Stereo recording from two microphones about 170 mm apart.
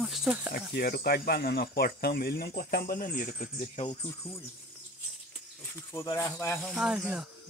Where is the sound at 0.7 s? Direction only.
60° left (ahead or behind).